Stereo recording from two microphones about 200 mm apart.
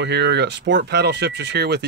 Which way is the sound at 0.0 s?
60° right (ahead or behind).